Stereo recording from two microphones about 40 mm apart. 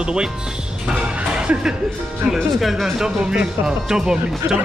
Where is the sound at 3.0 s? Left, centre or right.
Centre.